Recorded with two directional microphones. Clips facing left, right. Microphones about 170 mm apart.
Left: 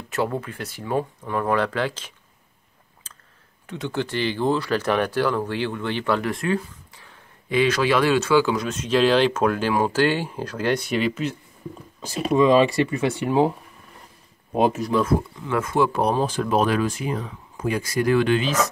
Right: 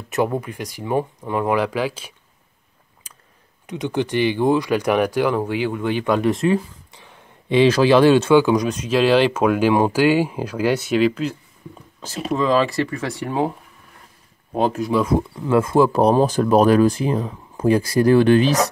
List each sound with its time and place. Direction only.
0.1 s speech: 15° right (ahead or behind)
3.6 s speech: 15° right (ahead or behind)
8.4 s speech: 15° right (ahead or behind); by 11.3 s centre (ahead or behind)
12.0 s speech: 15° left (ahead or behind)
14.7 s speech: 5° right (ahead or behind)
15.4 s speech: 30° right (ahead or behind)